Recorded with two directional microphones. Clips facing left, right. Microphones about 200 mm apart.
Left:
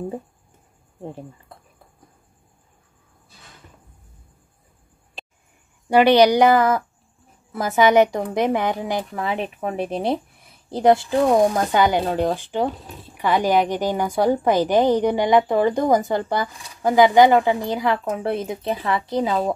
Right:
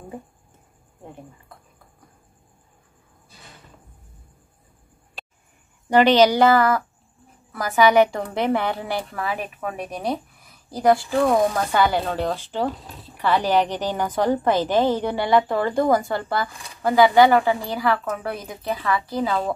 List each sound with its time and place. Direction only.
5.9 s a woman's voice: 10° left (ahead or behind)